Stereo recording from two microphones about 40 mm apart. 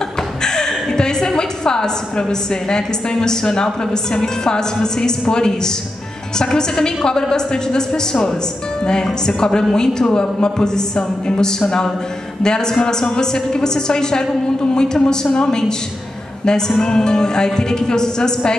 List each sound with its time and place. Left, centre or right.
0.4 s a woman's voice: centre